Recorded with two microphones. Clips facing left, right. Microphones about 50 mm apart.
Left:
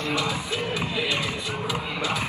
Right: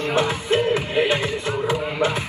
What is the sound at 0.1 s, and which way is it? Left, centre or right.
Music, right.